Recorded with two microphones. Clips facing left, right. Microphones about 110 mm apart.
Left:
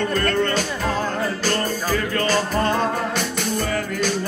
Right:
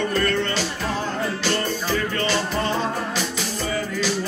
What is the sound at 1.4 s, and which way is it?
Music, 45° left (ahead or behind).